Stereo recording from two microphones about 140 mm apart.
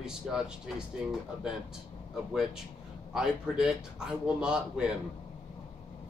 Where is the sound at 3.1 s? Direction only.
5° right (ahead or behind).